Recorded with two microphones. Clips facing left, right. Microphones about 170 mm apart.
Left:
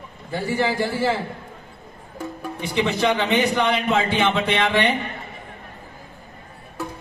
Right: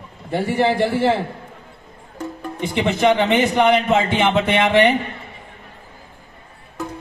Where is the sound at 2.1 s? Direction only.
20° right (ahead or behind).